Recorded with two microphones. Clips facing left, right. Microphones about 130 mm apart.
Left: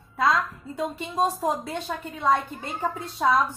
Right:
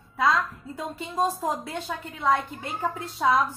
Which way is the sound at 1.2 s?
15° left (ahead or behind).